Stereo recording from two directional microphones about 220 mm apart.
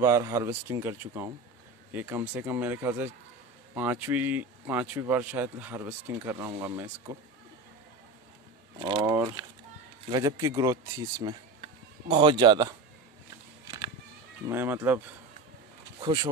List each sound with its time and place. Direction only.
0.0 s speech: 15° right (ahead or behind)
8.7 s speech: 20° right (ahead or behind)
14.5 s speech: 10° right (ahead or behind)
16.0 s speech: 20° right (ahead or behind)